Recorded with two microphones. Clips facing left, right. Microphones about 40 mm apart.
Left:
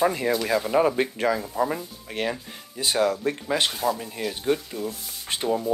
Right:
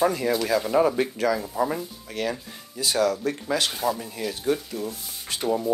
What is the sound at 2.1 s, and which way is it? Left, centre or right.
Speech, left.